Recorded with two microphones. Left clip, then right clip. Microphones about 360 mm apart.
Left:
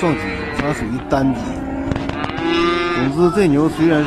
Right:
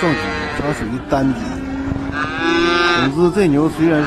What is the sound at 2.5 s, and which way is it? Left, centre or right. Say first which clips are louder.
Cattle: right 3 dB; right.